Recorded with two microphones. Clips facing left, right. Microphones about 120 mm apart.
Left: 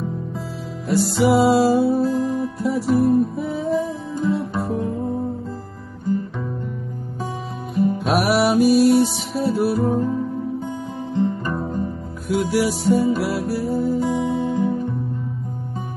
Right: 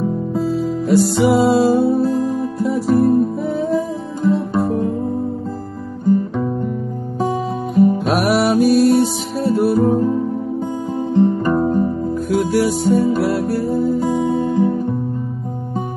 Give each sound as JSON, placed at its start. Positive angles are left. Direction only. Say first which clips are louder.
{"t": 0.8, "sound": "music", "louder": "right 3 dB", "side_deg": 0}
{"t": 4.2, "sound": "guitar", "louder": "right 6 dB", "side_deg": 0}
{"t": 7.8, "sound": "music", "louder": "right 4 dB", "side_deg": 0}
{"t": 11.4, "sound": "music", "louder": "right 9 dB", "side_deg": -40}
{"t": 12.3, "sound": "music", "louder": "right 2 dB", "side_deg": 5}